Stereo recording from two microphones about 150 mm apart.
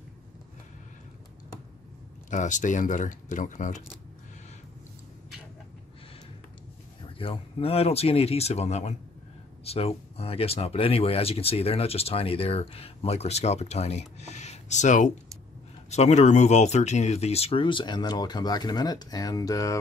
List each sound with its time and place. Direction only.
2.3 s speech: 55° left (ahead or behind)
7.2 s speech: 40° left (ahead or behind); by 19.8 s 20° left (ahead or behind)